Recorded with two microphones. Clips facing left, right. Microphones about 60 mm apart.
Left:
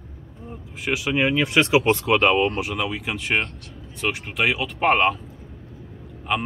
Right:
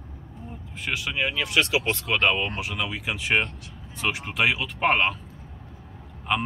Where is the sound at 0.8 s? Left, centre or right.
Centre.